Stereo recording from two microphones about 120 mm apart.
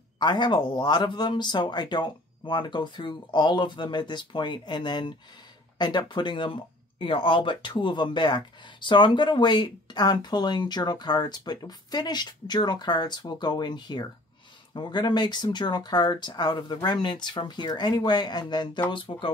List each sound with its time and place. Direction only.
0.2 s speech: 40° left (ahead or behind)